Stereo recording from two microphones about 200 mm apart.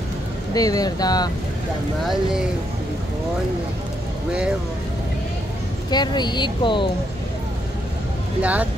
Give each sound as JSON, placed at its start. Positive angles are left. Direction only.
{"t": 0.6, "sound": "speech", "side_deg": 20}
{"t": 4.3, "sound": "speech", "side_deg": -5}
{"t": 5.9, "sound": "speech", "side_deg": 20}
{"t": 8.4, "sound": "speech", "side_deg": -5}